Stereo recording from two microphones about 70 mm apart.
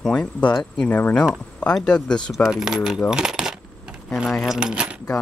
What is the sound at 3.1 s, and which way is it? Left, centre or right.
Coin, centre.